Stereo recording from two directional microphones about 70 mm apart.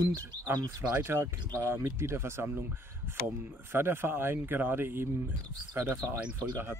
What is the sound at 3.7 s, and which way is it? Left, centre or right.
Speech, right.